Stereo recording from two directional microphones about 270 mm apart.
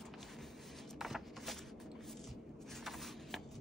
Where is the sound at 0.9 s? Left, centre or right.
Centre.